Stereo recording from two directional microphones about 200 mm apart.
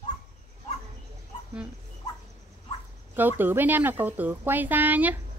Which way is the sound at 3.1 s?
10° right (ahead or behind).